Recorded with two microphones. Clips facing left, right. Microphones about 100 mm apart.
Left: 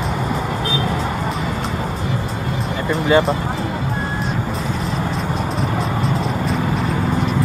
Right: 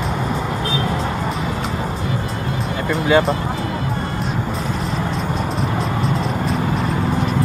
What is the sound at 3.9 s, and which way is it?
Music, 30° left (ahead or behind).